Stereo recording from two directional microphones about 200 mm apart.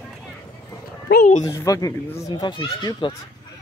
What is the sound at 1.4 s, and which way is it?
Speech, 15° left (ahead or behind).